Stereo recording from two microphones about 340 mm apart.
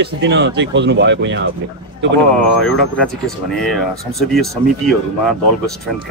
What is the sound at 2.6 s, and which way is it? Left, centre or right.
Speech, centre.